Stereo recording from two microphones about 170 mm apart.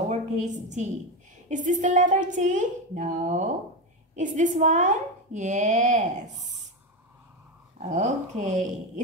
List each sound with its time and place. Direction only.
0.1 s a woman's voice: 45° right (ahead or behind)
7.9 s a woman's voice: 45° right (ahead or behind)